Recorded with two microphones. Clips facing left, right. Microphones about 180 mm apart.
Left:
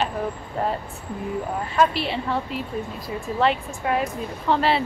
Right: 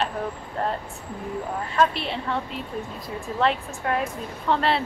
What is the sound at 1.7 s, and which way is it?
A woman's voice, 5° left (ahead or behind).